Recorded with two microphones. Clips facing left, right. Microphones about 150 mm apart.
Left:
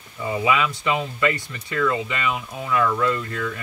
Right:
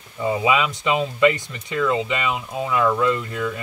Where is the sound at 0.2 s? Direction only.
20° right (ahead or behind).